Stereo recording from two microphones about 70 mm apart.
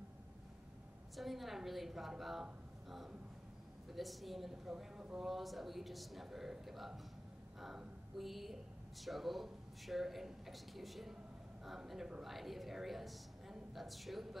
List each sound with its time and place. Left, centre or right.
1.1 s a woman's voice: centre
3.9 s a woman's voice: centre